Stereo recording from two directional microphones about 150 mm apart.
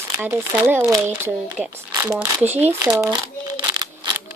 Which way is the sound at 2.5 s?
15° right (ahead or behind).